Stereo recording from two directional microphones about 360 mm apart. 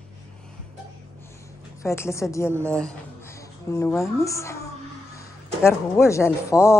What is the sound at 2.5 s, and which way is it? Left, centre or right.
A woman's voice, centre.